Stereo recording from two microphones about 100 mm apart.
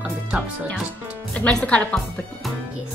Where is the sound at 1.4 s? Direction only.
10° left (ahead or behind).